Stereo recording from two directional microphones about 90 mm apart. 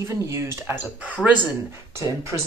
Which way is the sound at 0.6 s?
20° right (ahead or behind).